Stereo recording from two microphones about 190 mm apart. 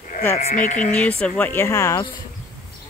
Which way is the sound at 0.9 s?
5° left (ahead or behind).